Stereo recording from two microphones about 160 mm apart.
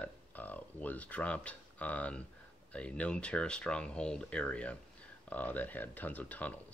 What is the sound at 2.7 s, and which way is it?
Speech, 5° left (ahead or behind).